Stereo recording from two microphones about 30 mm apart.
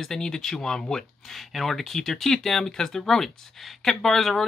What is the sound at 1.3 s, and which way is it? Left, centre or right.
Speech, centre.